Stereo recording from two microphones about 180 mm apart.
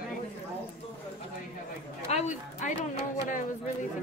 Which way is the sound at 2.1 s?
40° left (ahead or behind).